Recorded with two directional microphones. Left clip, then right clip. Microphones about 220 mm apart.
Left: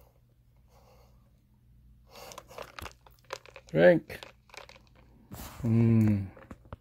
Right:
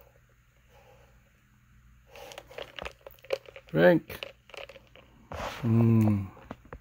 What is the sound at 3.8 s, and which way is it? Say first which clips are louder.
Typing: even; 10° right (ahead or behind).